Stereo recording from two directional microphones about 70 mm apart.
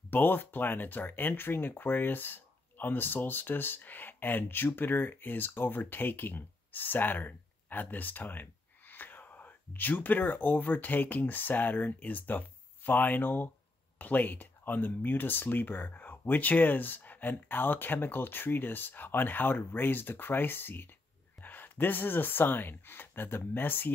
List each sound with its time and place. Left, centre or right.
0.1 s speech: left